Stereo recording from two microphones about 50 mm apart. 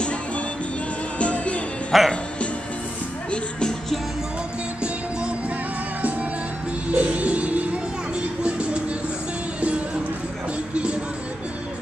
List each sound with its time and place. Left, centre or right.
1.2 s music: left
1.9 s speech: centre
3.3 s music: centre
6.9 s a sound: right
8.4 s music: right
10.7 s music: right